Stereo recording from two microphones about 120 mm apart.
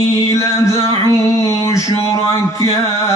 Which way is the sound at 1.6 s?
25° left (ahead or behind).